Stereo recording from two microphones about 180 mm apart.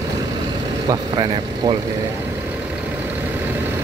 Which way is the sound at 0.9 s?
25° right (ahead or behind).